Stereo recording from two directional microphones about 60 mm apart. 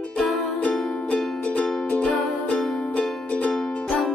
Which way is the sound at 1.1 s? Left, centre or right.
Left.